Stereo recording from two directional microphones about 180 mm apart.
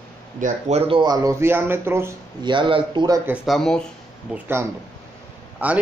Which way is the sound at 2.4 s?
25° right (ahead or behind).